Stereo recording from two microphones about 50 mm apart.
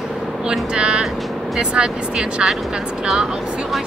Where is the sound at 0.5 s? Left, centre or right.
Centre.